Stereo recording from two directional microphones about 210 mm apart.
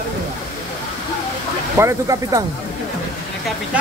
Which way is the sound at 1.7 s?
15° right (ahead or behind).